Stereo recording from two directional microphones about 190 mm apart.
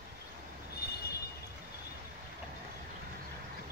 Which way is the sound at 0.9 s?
55° left (ahead or behind).